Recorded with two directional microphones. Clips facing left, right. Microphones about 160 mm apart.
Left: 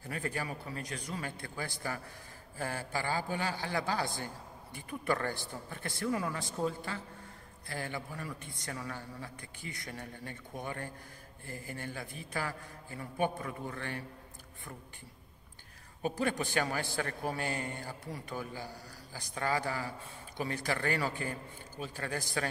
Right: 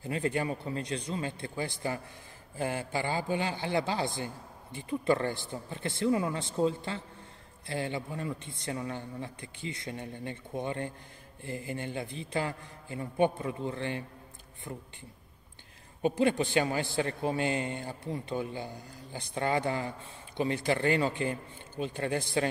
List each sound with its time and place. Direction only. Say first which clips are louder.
0.0 s a man's voice: right 7 dB; 25° right (ahead or behind)
16.0 s a man's voice: right 6 dB; 20° right (ahead or behind)